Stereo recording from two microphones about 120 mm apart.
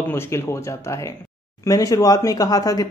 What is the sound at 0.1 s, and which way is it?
Speech, 25° left (ahead or behind).